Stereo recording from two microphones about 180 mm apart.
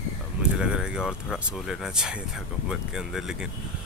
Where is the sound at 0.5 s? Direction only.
5° right (ahead or behind).